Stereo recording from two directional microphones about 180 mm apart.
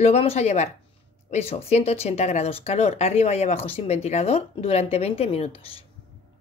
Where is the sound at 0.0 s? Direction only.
35° left (ahead or behind).